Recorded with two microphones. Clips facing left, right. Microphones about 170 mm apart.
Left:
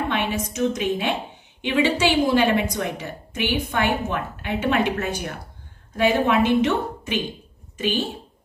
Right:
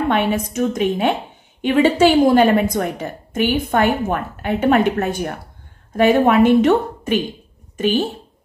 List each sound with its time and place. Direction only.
0.1 s a woman's voice: 55° right (ahead or behind)